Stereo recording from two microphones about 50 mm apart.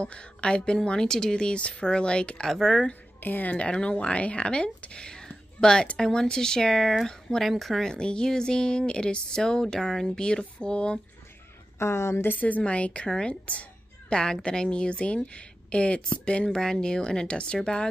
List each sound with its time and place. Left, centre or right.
0.0 s a woman's voice: left
3.2 s speech: left
3.5 s a woman's voice: left; by 7.9 s centre
7.9 s speech: centre
11.8 s a woman's voice: left
12.3 s a woman's voice: left; by 17.8 s centre